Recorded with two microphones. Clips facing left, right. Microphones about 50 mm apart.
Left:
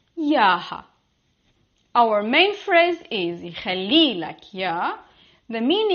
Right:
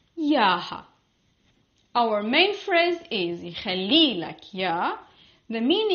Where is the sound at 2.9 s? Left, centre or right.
Centre.